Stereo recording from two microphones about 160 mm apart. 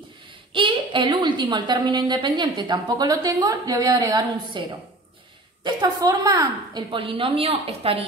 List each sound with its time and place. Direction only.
0.5 s a woman's voice: 30° right (ahead or behind)